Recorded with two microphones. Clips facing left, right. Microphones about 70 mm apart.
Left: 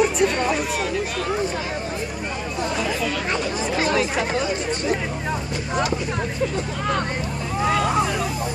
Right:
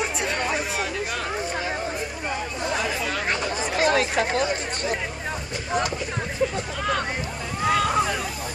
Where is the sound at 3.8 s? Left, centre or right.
Right.